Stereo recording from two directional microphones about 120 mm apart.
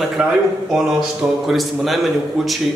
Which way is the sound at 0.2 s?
5° right (ahead or behind).